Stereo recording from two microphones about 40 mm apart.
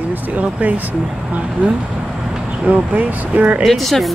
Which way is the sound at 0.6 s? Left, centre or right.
Right.